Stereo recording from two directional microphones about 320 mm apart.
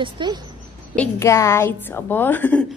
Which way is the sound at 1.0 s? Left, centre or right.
Centre.